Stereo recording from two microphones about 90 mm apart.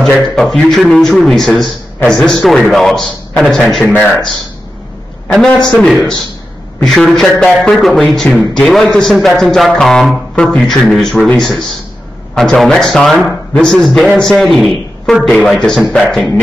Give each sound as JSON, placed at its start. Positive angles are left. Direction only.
{"t": 0.0, "sound": "a man's voice", "side_deg": 5}
{"t": 5.3, "sound": "a man's voice", "side_deg": 5}